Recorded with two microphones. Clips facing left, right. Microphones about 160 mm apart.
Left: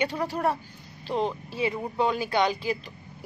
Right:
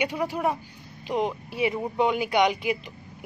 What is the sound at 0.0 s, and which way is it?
Speech, 10° right (ahead or behind).